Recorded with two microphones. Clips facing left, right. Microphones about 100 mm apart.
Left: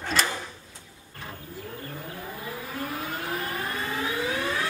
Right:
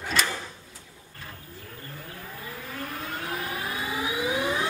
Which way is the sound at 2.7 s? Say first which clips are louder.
Left 2 dB; 5° left (ahead or behind).